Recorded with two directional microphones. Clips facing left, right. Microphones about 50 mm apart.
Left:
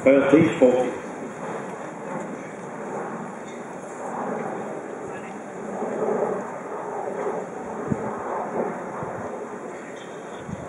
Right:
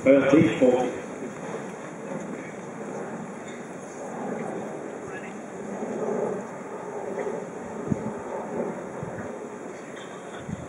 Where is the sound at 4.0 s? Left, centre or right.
Centre.